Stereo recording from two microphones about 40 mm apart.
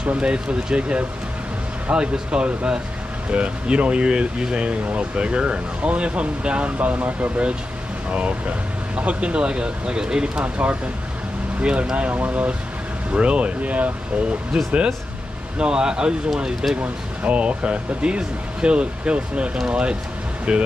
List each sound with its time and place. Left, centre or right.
0.0 s speech: right
6.8 s speech: right
10.4 s speech: right
11.6 s speech: right
14.5 s speech: centre
17.2 s speech: right